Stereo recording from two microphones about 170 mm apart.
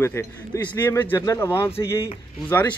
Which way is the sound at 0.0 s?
15° left (ahead or behind).